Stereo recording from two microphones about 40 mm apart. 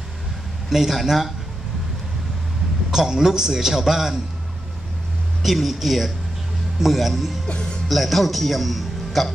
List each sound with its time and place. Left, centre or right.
0.7 s speech: centre
2.9 s a man's voice: centre
5.4 s speech: centre
7.4 s speech: left
7.9 s a man's voice: centre